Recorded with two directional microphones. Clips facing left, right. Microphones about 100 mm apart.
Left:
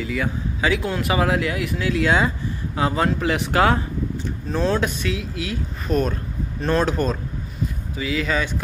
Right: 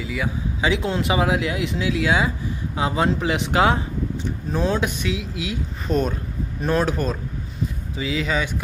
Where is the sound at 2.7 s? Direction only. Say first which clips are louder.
Even; 15° right (ahead or behind).